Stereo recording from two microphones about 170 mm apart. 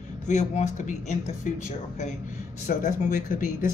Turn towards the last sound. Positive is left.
turn(degrees=50)  # may be behind; listen again after turning